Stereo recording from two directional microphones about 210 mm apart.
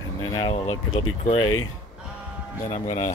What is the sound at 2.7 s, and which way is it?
Speech, 35° left (ahead or behind).